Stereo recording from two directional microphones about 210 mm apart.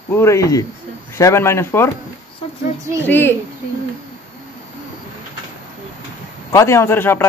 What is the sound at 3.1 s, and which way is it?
Speech, 10° left (ahead or behind).